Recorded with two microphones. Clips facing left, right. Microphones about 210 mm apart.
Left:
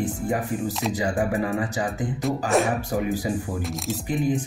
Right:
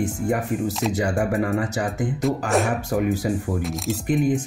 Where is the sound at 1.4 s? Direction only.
70° right (ahead or behind).